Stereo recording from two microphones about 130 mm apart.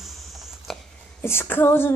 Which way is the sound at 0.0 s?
Centre (ahead or behind).